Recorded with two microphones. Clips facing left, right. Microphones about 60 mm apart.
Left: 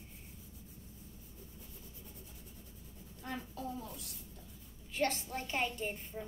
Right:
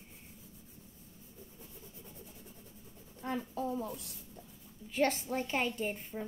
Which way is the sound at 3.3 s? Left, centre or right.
Right.